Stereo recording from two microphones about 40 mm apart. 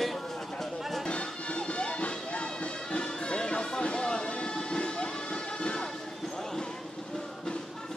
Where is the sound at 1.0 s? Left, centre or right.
Left.